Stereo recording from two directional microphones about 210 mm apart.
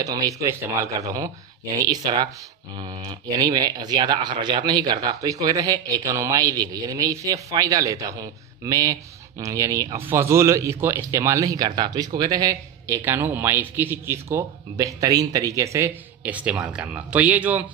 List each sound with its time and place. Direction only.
0.0 s speech: 15° right (ahead or behind)